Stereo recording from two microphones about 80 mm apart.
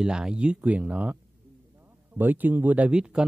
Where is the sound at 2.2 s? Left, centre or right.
Right.